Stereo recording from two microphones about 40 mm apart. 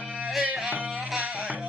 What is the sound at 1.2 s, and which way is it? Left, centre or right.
Music, right.